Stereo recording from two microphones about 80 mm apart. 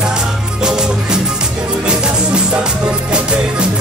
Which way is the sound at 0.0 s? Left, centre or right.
Centre.